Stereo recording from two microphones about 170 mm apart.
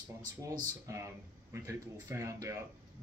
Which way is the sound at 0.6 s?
20° right (ahead or behind).